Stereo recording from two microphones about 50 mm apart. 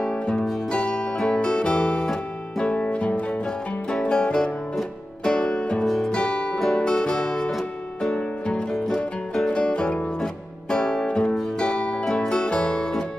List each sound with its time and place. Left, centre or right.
0.0 s music: centre
5.9 s music: centre
6.1 s music: left
8.7 s music: centre
9.5 s music: centre